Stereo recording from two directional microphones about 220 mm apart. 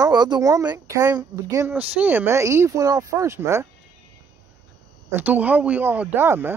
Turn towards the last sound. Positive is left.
turn(degrees=-10)  # may be behind; listen again after turning